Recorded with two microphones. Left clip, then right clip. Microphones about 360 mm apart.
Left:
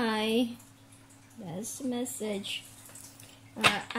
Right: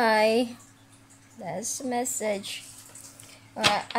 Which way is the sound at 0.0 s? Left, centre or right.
Centre.